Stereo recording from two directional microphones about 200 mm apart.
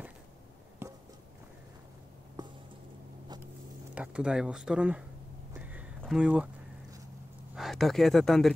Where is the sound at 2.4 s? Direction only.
20° right (ahead or behind).